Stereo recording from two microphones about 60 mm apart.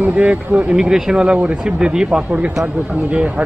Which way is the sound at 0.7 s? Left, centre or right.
Centre.